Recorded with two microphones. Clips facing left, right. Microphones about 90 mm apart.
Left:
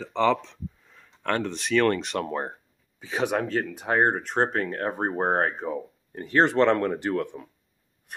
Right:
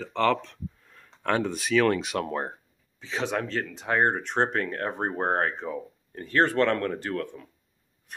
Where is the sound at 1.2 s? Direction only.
10° right (ahead or behind).